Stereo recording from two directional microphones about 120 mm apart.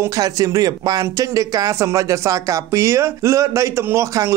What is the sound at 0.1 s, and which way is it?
Speech, 30° right (ahead or behind).